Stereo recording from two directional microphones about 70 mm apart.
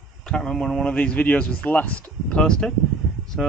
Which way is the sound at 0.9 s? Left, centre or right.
Centre.